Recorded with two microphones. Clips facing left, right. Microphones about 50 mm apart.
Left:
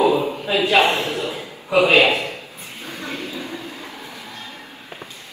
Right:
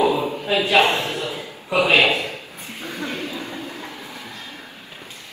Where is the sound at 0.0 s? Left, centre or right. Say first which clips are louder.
Left 2 dB; left.